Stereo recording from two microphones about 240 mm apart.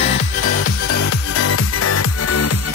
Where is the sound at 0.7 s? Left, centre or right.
Left.